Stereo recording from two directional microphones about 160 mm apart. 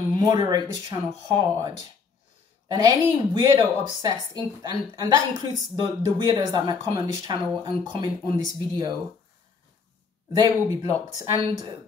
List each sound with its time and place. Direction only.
0.1 s speech: 25° right (ahead or behind)
2.7 s speech: 25° right (ahead or behind)
10.3 s speech: 20° right (ahead or behind)